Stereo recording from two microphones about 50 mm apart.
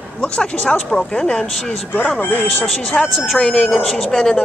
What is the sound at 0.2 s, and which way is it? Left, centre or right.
Speech, centre.